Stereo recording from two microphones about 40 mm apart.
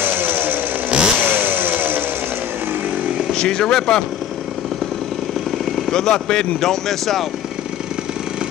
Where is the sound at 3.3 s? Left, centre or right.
Centre.